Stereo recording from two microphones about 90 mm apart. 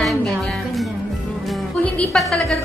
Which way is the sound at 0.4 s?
5° left (ahead or behind).